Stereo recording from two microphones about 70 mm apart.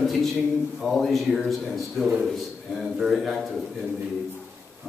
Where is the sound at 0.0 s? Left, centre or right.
Centre.